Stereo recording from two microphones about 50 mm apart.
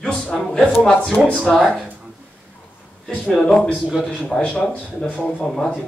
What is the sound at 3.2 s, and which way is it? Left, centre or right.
Speech, centre.